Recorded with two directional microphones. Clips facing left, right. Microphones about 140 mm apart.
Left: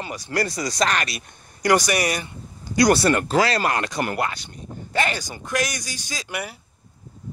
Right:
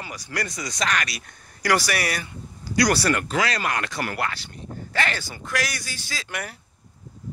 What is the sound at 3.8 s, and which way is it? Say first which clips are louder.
Speech: left 3 dB; 20° left (ahead or behind).